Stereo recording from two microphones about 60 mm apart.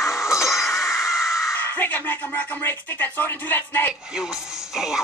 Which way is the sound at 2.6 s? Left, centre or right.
Left.